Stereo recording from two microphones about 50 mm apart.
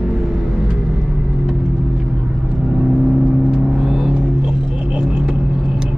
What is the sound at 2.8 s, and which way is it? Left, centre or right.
Vehicle, centre.